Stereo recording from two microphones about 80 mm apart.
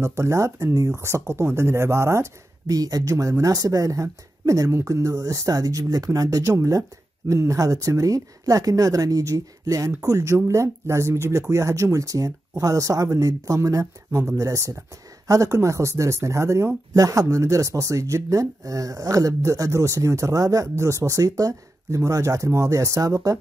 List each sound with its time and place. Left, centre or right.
0.0 s speech: right
2.6 s speech: right